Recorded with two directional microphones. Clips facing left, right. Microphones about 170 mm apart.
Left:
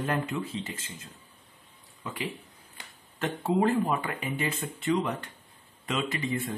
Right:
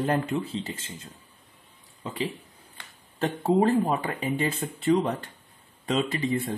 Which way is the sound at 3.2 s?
30° right (ahead or behind).